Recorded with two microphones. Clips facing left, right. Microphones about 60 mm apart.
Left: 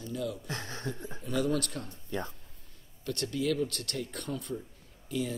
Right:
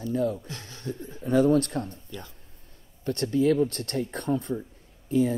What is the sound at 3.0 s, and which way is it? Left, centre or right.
Speech, right.